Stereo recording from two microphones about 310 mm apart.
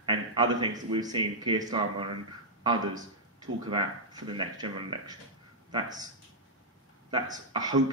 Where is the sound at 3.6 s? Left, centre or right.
Centre.